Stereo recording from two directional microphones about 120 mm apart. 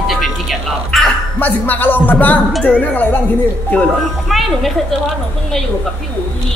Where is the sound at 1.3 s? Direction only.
15° left (ahead or behind).